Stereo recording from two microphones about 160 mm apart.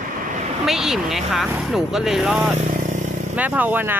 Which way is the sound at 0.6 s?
Centre (ahead or behind).